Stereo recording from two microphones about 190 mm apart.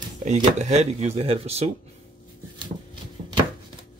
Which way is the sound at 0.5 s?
35° right (ahead or behind).